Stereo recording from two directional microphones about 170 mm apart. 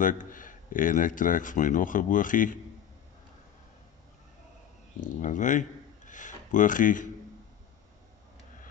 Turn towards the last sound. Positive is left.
turn(degrees=50)  # may be behind; listen again after turning